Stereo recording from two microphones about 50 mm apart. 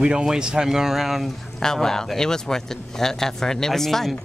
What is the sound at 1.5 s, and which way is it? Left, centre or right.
Speech, centre.